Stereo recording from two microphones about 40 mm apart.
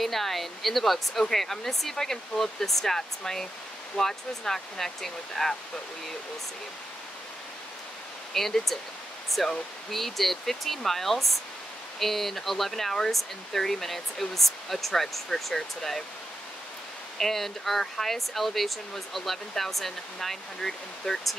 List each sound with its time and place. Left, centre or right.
0.0 s speech: centre
8.3 s speech: centre
17.2 s speech: centre